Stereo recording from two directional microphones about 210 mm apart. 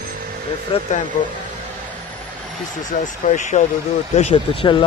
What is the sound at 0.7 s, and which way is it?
Speech, 25° left (ahead or behind).